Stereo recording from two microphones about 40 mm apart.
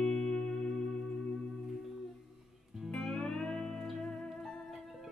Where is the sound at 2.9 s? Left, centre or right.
Centre.